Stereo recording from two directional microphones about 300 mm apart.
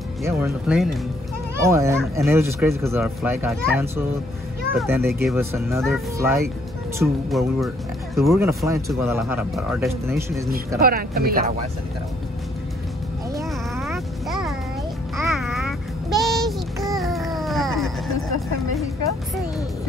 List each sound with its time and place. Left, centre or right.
0.2 s a child's voice: centre
10.8 s speech: right
13.4 s music: centre